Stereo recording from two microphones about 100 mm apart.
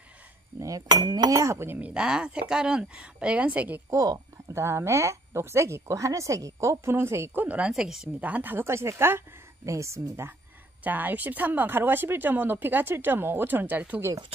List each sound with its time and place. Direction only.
0.6 s cutlery: 35° right (ahead or behind)
0.8 s speech: 45° right (ahead or behind); by 1.8 s 25° right (ahead or behind)
1.8 s a woman's voice: 10° right (ahead or behind)
3.9 s speech: 35° right (ahead or behind)
10.8 s speech: 15° right (ahead or behind)